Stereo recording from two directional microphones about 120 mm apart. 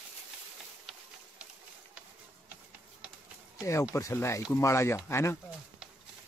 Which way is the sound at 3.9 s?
25° left (ahead or behind).